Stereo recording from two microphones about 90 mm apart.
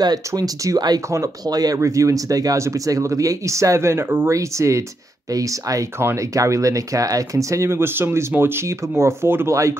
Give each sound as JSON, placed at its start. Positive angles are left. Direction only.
{"t": 0.3, "sound": "speech", "side_deg": -35}
{"t": 1.0, "sound": "speech", "side_deg": -35}
{"t": 4.3, "sound": "speech", "side_deg": -35}